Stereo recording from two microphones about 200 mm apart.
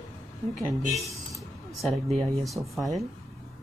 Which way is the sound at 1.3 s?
Centre (ahead or behind).